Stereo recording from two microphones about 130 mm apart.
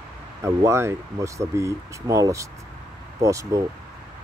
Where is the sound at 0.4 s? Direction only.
20° right (ahead or behind).